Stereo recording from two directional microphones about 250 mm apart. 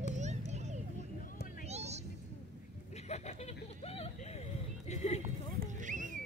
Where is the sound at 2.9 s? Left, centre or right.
Left.